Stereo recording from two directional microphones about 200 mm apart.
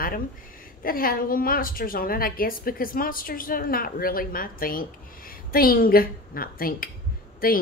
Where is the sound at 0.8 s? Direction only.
45° left (ahead or behind).